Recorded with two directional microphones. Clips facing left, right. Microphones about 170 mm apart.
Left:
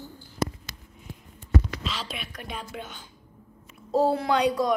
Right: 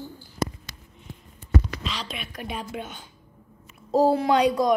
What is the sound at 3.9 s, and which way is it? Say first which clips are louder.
Speech: right 3 dB; 15° right (ahead or behind).